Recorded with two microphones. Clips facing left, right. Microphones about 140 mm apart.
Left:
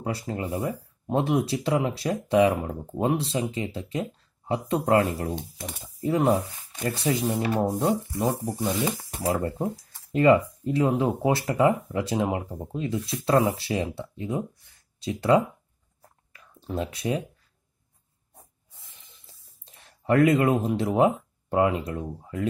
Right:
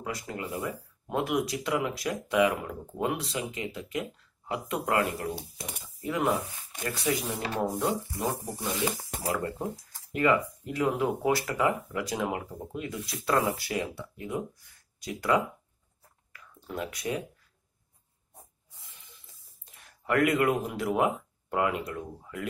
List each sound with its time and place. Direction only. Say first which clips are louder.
0.0 s speech: left 5 dB; 30° left (ahead or behind)
16.3 s a sound: left 5 dB; 30° left (ahead or behind)
18.9 s spray: right 1 dB; 20° left (ahead or behind)
19.6 s speech: left 7 dB; 30° left (ahead or behind)